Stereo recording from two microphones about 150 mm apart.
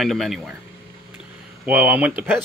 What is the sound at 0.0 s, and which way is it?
Speech, centre (ahead or behind).